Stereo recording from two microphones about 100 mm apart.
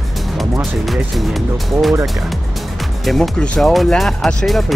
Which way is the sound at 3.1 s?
5° left (ahead or behind).